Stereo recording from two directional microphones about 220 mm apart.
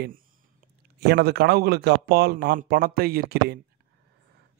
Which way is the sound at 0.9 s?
45° right (ahead or behind).